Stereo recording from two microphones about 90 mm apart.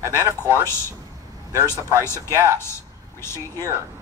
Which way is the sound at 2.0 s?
30° left (ahead or behind).